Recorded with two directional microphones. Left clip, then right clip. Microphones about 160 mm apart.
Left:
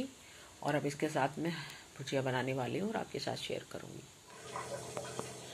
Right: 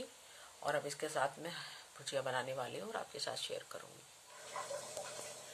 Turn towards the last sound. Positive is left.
turn(degrees=-20)  # may be behind; listen again after turning